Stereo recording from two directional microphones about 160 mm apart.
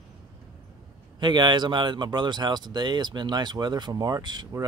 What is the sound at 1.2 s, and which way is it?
Speech, 25° right (ahead or behind).